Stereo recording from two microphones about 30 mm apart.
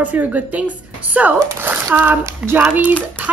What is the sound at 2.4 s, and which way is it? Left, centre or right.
Speech, right.